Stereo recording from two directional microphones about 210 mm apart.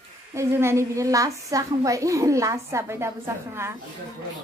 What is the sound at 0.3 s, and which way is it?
A woman's voice, 10° right (ahead or behind).